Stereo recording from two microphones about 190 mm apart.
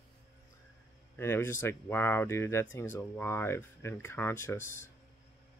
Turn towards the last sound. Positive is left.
turn(degrees=10)  # may be behind; listen again after turning